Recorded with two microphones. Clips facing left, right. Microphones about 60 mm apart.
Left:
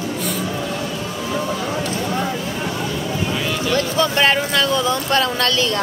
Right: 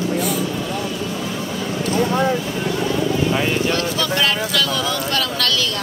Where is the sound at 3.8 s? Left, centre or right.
Left.